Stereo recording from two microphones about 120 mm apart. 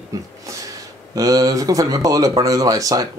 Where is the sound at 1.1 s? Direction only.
30° right (ahead or behind).